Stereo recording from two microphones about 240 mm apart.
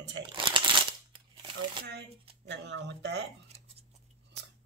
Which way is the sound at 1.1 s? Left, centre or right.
Right.